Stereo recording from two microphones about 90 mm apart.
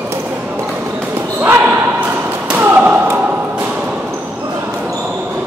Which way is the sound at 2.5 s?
20° right (ahead or behind).